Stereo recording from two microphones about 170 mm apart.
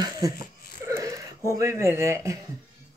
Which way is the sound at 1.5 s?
15° right (ahead or behind).